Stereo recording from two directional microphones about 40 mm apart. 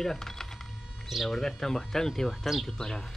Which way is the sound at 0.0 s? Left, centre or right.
Centre.